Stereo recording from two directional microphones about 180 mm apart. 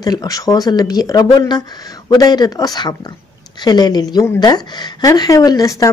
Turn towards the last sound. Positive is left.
turn(degrees=20)  # may be behind; listen again after turning